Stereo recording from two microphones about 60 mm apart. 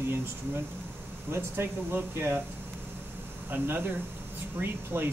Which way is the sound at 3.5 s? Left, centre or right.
Right.